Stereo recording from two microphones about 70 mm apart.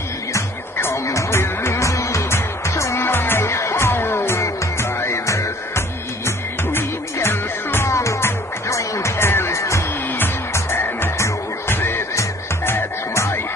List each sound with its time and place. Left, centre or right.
0.3 s music: left
10.1 s music: left